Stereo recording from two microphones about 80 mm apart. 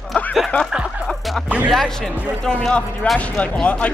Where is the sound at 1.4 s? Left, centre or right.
Centre.